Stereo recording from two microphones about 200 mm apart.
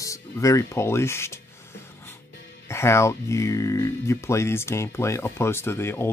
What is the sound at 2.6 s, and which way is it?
Speech, 15° left (ahead or behind).